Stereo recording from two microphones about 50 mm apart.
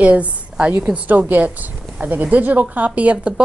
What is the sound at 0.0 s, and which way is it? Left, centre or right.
A woman's voice, right.